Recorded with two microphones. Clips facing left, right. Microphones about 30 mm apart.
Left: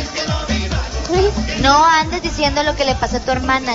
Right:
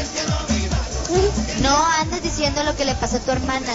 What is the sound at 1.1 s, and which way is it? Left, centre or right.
A woman's voice, left.